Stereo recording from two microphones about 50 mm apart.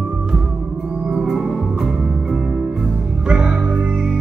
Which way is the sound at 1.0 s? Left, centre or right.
Centre.